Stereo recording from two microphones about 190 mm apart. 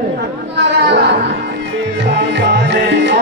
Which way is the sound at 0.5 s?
65° right (ahead or behind).